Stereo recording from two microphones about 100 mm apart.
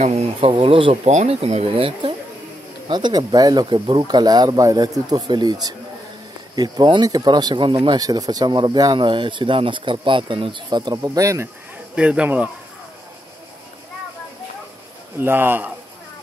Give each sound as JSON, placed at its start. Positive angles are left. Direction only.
{"t": 0.1, "sound": "speech", "side_deg": -80}
{"t": 2.9, "sound": "speech", "side_deg": -45}
{"t": 8.0, "sound": "speech", "side_deg": -40}
{"t": 11.9, "sound": "speech", "side_deg": -10}
{"t": 15.1, "sound": "speech", "side_deg": -20}